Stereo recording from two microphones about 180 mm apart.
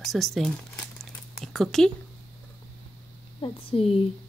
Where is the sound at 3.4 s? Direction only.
30° left (ahead or behind).